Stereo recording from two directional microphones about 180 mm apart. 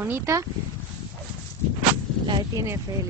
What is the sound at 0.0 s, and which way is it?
Speech, 15° right (ahead or behind).